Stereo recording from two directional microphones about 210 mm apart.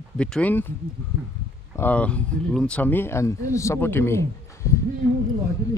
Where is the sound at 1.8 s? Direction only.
5° left (ahead or behind).